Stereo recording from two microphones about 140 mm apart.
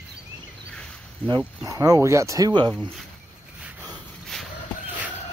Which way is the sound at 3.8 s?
Centre (ahead or behind).